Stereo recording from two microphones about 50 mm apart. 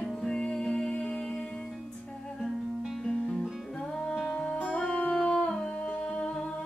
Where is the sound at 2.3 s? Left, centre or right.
Centre.